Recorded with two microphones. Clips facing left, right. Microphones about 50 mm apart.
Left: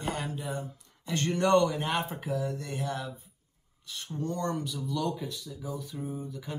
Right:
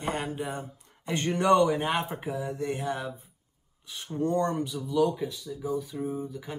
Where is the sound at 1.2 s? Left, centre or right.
Centre.